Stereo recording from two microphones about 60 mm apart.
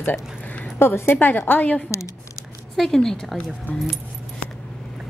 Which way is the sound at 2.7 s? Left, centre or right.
Centre.